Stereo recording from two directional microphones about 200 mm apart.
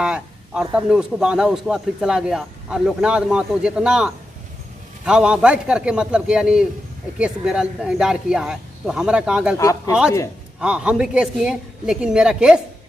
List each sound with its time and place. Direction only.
0.0 s a sound: 5° right (ahead or behind)
0.7 s a man's voice: 5° right (ahead or behind)
9.6 s speech: 15° left (ahead or behind)
10.6 s a man's voice: 5° right (ahead or behind)